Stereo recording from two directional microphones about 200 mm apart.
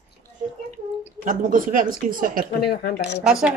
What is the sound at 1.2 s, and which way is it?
A woman's voice, 40° right (ahead or behind).